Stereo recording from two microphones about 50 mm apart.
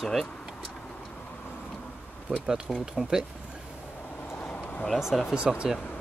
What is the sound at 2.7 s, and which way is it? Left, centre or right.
Speech, centre.